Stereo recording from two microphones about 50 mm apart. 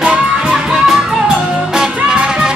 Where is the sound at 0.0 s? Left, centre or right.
Centre.